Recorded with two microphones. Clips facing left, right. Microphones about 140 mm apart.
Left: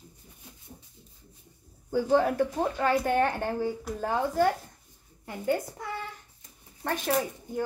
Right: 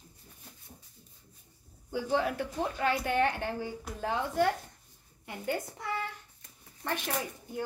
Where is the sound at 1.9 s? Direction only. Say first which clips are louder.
Left 6 dB; 45° left (ahead or behind).